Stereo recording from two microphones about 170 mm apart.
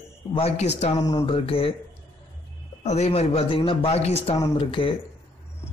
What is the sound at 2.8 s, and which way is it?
A man's voice, 40° left (ahead or behind).